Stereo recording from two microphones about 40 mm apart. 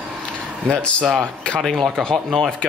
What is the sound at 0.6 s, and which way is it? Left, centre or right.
Speech, left.